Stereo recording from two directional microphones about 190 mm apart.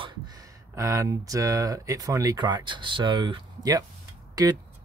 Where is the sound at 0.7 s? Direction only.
15° right (ahead or behind).